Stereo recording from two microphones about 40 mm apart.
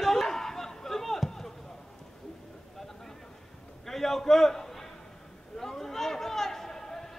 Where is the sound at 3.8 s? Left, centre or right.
Centre.